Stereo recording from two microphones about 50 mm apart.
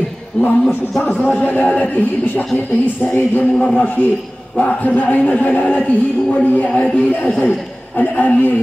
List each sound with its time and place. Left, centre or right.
0.3 s a man's voice: left
3.5 s a man's voice: left